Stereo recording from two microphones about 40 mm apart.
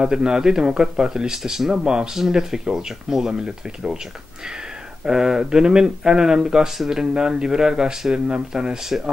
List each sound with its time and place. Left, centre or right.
0.0 s speech: centre
5.0 s speech: centre